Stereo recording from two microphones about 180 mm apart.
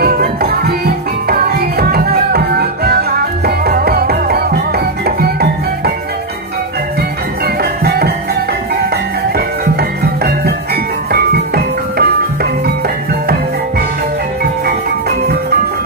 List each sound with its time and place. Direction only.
0.0 s music: 55° right (ahead or behind)
7.8 s music: 60° right (ahead or behind)
9.8 s music: 60° right (ahead or behind)